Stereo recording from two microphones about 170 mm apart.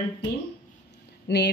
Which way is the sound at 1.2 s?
80° left.